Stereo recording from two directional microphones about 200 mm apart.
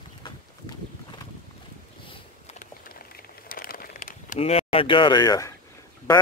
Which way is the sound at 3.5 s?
45° left (ahead or behind).